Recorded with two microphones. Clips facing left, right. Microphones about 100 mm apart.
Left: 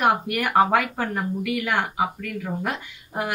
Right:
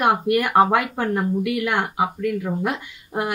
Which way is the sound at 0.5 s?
20° right (ahead or behind).